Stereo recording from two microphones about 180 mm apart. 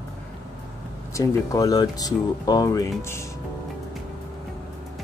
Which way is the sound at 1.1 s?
20° left (ahead or behind).